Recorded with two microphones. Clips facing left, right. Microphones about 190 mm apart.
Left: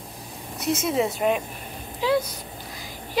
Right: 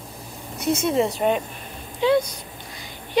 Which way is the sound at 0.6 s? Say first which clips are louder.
Right 3 dB; centre (ahead or behind).